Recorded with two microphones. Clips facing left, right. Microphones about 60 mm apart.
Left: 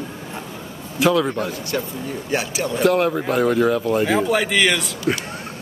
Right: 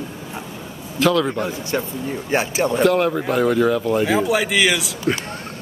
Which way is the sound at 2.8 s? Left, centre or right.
Centre.